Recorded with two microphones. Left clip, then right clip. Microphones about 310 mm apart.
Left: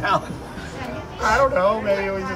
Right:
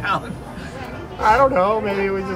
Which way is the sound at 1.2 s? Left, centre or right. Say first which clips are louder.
Right 3 dB; right.